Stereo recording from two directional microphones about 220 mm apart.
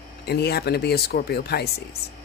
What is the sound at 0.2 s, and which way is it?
Speech, 45° left (ahead or behind).